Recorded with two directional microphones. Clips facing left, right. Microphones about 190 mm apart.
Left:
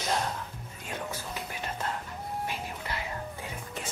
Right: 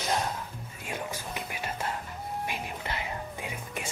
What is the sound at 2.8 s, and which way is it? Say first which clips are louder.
Whispering: right 1 dB; 20° right (ahead or behind).